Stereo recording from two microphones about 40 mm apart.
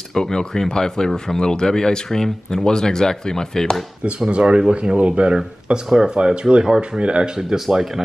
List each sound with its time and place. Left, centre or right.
0.1 s speech: centre
4.3 s speech: right
4.9 s speech: right
5.9 s speech: centre